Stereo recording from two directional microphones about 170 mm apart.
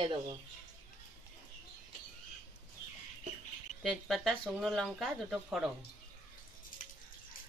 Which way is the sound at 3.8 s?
Centre (ahead or behind).